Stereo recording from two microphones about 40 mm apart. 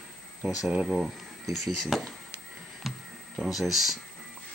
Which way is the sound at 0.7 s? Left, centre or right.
Right.